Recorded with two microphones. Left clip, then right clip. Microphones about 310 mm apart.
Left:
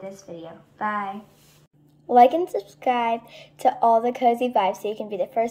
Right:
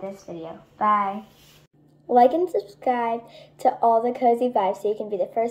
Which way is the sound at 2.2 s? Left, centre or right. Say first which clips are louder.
Left 2 dB; left.